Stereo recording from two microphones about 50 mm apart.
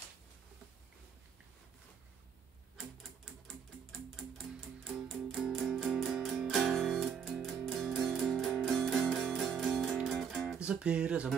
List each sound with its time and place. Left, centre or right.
2.8 s music: centre
10.6 s music: right